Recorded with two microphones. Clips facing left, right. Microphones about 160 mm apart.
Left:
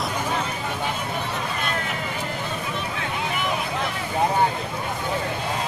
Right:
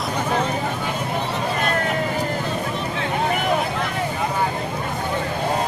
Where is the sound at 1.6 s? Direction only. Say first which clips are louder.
Right 6 dB; 40° right (ahead or behind).